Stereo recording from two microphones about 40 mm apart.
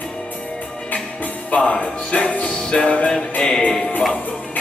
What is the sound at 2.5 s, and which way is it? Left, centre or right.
Music, centre.